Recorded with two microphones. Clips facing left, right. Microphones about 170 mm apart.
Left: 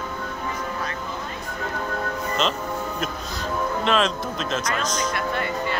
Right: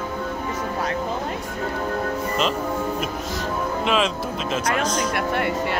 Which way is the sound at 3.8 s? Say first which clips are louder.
Even; 5° right (ahead or behind).